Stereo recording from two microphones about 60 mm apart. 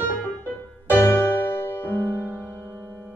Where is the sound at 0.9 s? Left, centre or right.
Left.